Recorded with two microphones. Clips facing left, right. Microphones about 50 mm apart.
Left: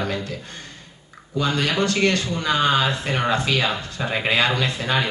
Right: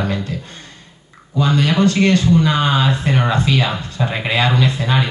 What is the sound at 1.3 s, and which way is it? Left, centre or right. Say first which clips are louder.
Speech: right 5 dB; right.